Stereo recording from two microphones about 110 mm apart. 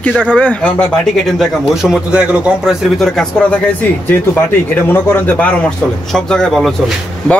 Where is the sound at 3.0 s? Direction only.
5° left (ahead or behind).